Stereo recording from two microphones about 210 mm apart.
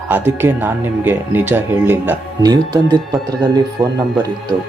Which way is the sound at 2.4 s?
20° right (ahead or behind).